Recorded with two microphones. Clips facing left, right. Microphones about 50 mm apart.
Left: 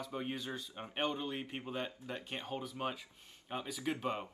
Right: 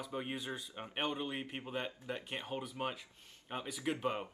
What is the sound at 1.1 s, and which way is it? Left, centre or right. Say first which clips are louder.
Speech: even; centre.